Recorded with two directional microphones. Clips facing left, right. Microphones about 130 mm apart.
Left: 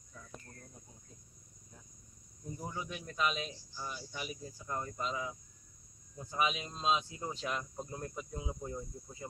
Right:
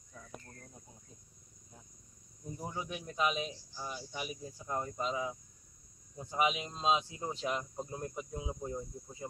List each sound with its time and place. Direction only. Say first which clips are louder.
2.6 s speech: right 2 dB; 20° right (ahead or behind)